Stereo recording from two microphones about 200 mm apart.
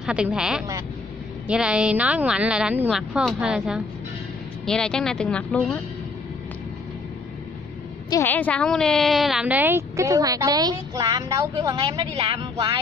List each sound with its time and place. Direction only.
0.0 s speech: 5° right (ahead or behind)
8.1 s a woman's voice: 10° left (ahead or behind); by 12.7 s 25° right (ahead or behind)